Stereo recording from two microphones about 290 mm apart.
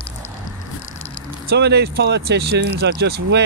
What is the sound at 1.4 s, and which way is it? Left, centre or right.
Speech, right.